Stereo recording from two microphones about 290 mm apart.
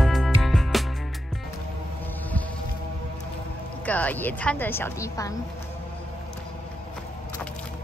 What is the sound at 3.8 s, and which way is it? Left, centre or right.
A woman's voice, centre.